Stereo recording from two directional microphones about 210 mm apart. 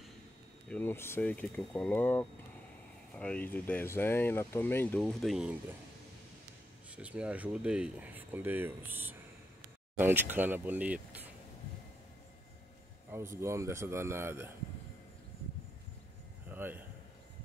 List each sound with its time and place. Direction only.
0.7 s speech: 10° left (ahead or behind)
7.0 s speech: 5° right (ahead or behind)
13.1 s speech: 15° right (ahead or behind)
16.4 s a sound: 10° right (ahead or behind)